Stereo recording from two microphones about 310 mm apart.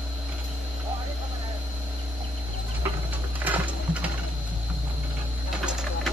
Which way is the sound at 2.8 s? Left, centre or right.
Centre.